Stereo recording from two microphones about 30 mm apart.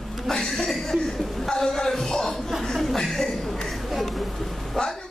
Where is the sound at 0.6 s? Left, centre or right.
Centre.